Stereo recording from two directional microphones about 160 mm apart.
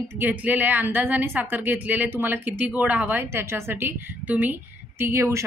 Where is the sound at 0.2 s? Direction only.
10° right (ahead or behind).